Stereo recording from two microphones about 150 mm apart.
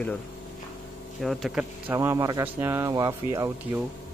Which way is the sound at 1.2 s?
Centre (ahead or behind).